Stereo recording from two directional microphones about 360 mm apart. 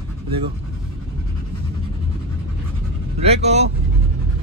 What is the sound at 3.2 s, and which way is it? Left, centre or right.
Speech, centre.